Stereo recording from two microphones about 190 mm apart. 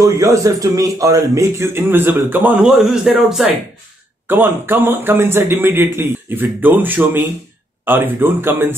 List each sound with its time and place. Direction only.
0.0 s speech: 15° right (ahead or behind)